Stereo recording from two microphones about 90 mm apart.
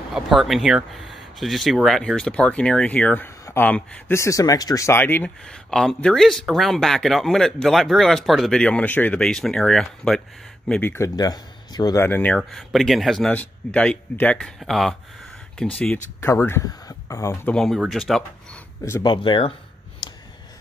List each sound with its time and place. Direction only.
0.1 s speech: centre (ahead or behind); by 3.8 s 20° left (ahead or behind)
4.1 s speech: 35° left (ahead or behind)
4.8 s speech: 25° left (ahead or behind)
5.4 s speech: 5° left (ahead or behind)
11.1 s speech: 45° left (ahead or behind)
12.0 s speech: 20° left (ahead or behind)
12.4 s speech: centre (ahead or behind)
13.3 s speech: 15° left (ahead or behind)
14.4 s speech: centre (ahead or behind)
16.2 s speech: 25° left (ahead or behind)
16.8 s a sound: 35° left (ahead or behind)
17.5 s speech: 10° left (ahead or behind)
19.0 s speech: 65° left (ahead or behind)
20.0 s a sound: 55° left (ahead or behind)